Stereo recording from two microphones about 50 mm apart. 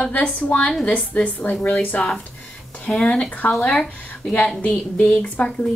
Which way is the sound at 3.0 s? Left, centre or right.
Centre.